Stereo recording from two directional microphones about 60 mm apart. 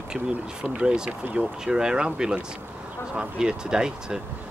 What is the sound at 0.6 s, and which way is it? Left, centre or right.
Speech, centre.